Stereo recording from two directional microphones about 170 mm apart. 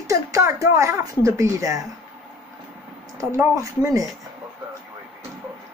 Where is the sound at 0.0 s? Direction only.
20° right (ahead or behind).